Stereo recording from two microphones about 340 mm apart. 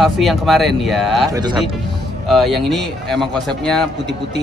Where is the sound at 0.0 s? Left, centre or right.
Centre.